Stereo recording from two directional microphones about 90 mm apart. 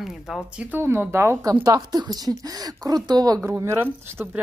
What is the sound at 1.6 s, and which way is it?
Speech, 45° right (ahead or behind).